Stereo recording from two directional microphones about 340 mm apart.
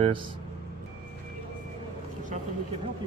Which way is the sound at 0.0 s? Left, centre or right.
Centre.